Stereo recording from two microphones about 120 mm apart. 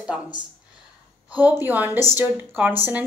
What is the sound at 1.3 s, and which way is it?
A woman's voice, 15° right (ahead or behind).